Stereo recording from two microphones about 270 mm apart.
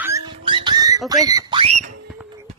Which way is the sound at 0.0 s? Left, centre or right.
Centre.